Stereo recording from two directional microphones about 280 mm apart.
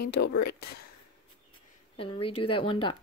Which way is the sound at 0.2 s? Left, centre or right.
Left.